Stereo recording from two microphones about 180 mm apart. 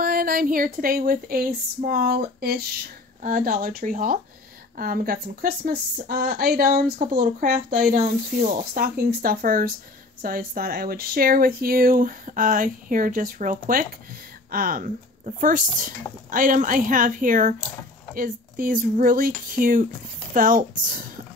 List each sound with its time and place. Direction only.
0.0 s speech: 55° right (ahead or behind)